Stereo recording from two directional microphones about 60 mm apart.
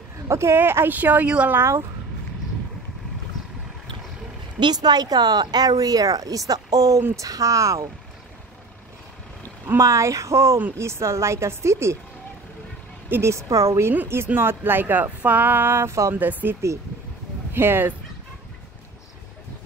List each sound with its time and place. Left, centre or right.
0.3 s a woman's voice: right
0.6 s speech: right
1.6 s a woman's voice: right
4.7 s speech: right
7.2 s speech: right
9.8 s a woman's voice: right
13.2 s a woman's voice: right
14.0 s speech: right
16.2 s speech: right